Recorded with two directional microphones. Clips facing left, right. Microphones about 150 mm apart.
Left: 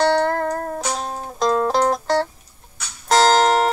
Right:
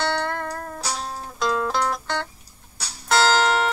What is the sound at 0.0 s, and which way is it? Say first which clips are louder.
Music: left 8 dB; 40° left (ahead or behind).